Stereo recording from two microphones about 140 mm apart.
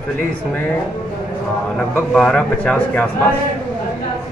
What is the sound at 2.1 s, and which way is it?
Speech, 5° left (ahead or behind).